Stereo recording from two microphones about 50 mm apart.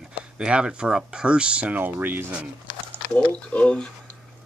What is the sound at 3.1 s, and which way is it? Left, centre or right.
Speech, left.